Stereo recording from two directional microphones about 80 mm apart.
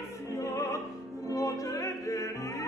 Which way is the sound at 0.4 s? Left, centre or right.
Left.